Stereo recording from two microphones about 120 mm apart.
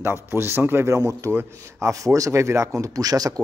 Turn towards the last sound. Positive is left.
turn(degrees=-30)  # may be behind; listen again after turning